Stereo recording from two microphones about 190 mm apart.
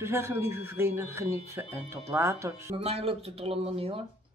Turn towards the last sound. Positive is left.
turn(degrees=-30)  # may be behind; listen again after turning